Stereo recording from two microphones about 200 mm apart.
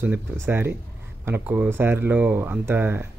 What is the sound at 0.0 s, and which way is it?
Speech, 10° right (ahead or behind).